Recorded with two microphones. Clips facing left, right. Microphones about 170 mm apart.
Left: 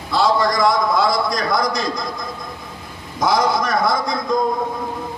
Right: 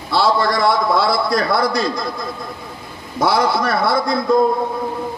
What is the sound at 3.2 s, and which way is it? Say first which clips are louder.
Speech: right 1 dB; 30° right (ahead or behind).